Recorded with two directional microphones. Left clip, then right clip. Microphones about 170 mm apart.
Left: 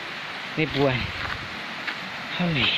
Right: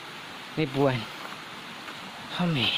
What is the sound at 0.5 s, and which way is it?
Speech, 40° right (ahead or behind).